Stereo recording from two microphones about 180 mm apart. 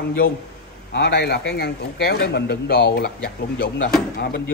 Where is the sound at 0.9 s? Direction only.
65° left (ahead or behind).